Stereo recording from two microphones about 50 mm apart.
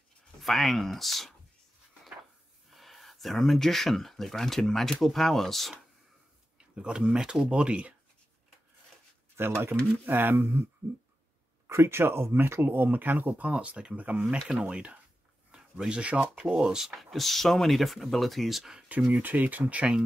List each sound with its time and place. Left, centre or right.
0.4 s speech: centre
2.7 s speech: centre
6.7 s speech: centre
9.4 s speech: right
10.0 s speech: right
11.6 s speech: right
13.3 s speech: right
14.3 s speech: centre
15.5 s a sound: centre
16.0 s speech: right
16.5 s speech: centre
19.1 s speech: right